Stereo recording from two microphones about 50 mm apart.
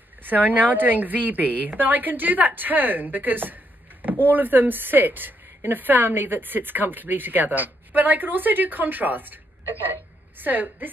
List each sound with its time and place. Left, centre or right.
0.2 s a woman's voice: right